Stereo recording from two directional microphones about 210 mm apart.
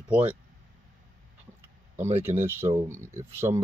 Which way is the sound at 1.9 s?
35° right (ahead or behind).